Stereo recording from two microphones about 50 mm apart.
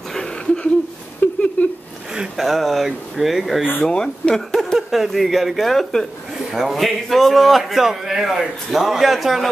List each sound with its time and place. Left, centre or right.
1.2 s a sound: left
2.1 s a man's voice: centre
3.8 s speech: centre
4.7 s a man's voice: centre
6.3 s a man's voice: centre